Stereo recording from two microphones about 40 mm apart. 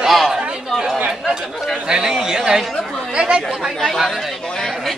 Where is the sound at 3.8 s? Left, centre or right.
Centre.